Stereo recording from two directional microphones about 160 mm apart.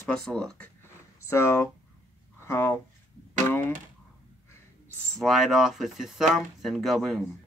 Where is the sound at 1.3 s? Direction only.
15° left (ahead or behind).